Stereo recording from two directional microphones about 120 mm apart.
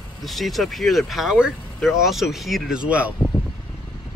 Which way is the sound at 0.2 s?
Centre (ahead or behind).